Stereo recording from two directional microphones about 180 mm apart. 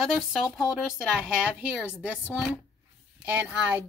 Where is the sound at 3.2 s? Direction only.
10° right (ahead or behind).